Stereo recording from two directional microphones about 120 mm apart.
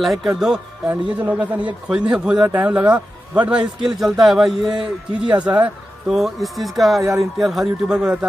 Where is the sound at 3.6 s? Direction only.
35° right (ahead or behind).